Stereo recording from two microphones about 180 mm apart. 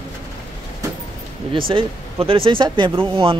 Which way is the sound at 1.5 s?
30° right (ahead or behind).